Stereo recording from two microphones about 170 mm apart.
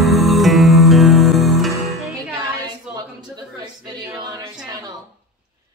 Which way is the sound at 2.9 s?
5° right (ahead or behind).